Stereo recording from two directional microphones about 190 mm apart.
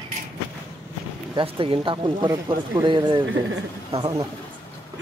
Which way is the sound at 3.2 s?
90° right.